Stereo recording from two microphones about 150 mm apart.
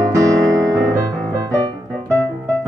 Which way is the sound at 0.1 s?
20° right (ahead or behind).